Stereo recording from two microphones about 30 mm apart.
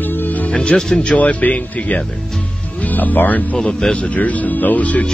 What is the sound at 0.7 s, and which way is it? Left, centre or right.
Speech, left.